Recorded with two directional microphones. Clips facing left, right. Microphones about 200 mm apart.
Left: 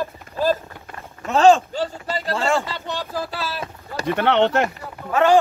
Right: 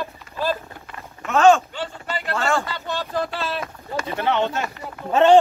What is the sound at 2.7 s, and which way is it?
Speech, 15° left (ahead or behind).